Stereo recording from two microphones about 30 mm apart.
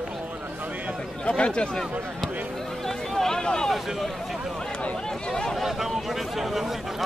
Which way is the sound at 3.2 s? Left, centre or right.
Centre.